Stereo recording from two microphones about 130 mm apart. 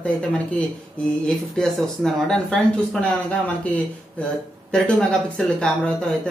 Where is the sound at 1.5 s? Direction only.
5° left (ahead or behind).